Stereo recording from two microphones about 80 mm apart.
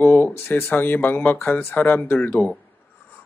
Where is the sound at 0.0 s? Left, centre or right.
Left.